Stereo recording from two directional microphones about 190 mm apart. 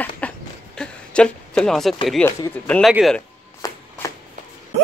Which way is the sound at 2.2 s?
15° left (ahead or behind).